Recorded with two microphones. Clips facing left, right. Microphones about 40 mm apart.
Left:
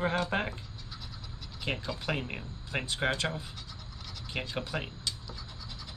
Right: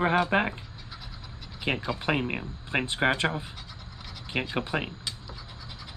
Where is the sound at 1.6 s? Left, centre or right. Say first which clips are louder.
Right 6 dB; right.